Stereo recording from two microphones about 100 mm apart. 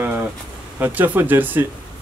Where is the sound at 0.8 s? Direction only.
20° right (ahead or behind).